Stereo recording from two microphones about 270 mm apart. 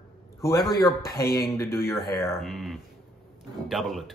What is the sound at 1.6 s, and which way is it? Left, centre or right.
Speech, centre.